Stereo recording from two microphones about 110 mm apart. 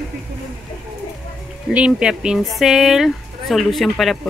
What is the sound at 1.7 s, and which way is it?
Speech, 10° right (ahead or behind).